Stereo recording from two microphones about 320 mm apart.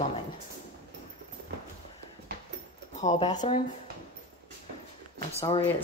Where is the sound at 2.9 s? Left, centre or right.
Left.